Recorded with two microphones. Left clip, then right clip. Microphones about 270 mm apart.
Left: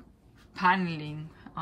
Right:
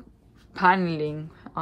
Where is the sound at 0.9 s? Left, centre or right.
Right.